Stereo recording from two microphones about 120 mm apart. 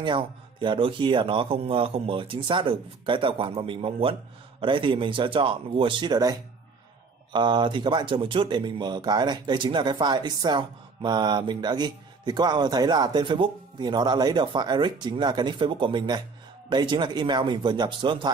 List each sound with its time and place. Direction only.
0.0 s speech: 40° right (ahead or behind)